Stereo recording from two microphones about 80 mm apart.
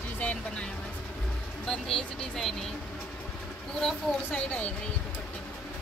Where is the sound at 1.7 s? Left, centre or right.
Centre.